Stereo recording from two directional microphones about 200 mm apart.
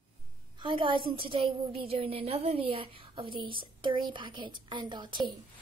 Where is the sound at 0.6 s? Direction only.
25° right (ahead or behind).